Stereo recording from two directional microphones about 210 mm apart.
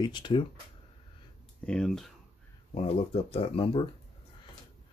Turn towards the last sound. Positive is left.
turn(degrees=25)  # may be behind; listen again after turning